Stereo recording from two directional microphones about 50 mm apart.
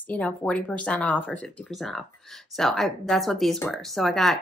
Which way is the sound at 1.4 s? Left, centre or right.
Left.